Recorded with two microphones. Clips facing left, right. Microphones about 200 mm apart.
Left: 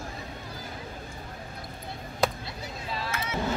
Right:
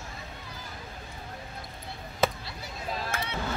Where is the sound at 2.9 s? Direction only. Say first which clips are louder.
Right 1 dB; 50° right (ahead or behind).